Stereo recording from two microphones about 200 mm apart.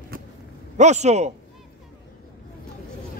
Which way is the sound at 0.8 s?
35° right (ahead or behind).